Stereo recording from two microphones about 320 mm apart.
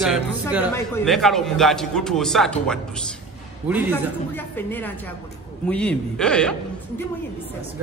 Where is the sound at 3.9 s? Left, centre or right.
Centre.